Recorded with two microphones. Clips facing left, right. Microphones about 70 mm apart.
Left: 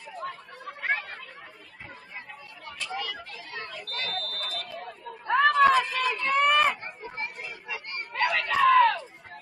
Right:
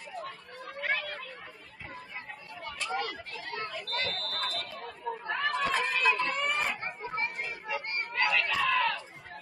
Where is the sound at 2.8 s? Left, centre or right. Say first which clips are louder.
Even; right.